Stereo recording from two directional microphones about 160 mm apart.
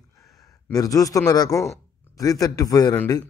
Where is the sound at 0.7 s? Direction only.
20° left (ahead or behind).